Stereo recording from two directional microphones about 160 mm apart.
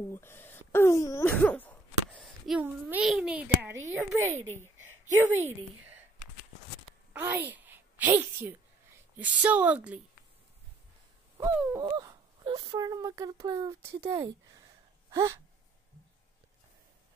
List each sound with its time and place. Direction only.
0.1 s throat clearing: 15° left (ahead or behind)
2.6 s a child's voice: 10° right (ahead or behind)
4.4 s a woman's voice: 15° left (ahead or behind)
7.2 s a woman's voice: 15° right (ahead or behind)
11.5 s a child's voice: 10° right (ahead or behind)
11.8 s speech: 25° right (ahead or behind)
15.0 s a sound: 20° right (ahead or behind)